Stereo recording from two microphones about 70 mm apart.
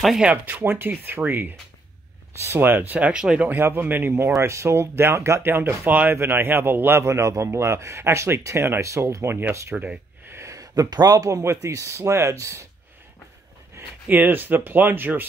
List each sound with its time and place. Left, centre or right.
0.2 s a man's voice: right
2.9 s speech: centre
3.6 s a man's voice: right
4.4 s a man's voice: right
9.8 s a sound: right
10.3 s a sound: right
10.7 s speech: right
11.2 s speech: right
14.0 s speech: right